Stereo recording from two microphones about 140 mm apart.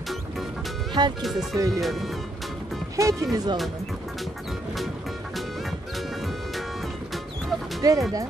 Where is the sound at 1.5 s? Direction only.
25° right (ahead or behind).